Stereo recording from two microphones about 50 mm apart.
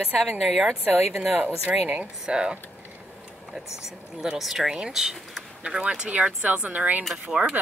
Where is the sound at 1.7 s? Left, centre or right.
Right.